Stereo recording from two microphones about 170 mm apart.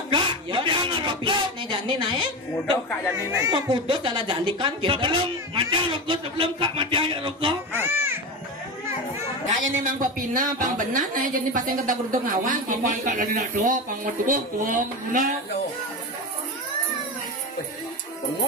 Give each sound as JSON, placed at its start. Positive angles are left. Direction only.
{"t": 0.1, "sound": "a sound", "side_deg": -30}
{"t": 3.3, "sound": "speech", "side_deg": -25}
{"t": 7.7, "sound": "a child's voice", "side_deg": -10}
{"t": 9.7, "sound": "a woman's voice", "side_deg": -50}